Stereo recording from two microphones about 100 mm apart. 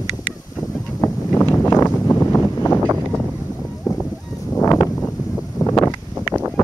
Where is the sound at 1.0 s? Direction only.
20° left (ahead or behind).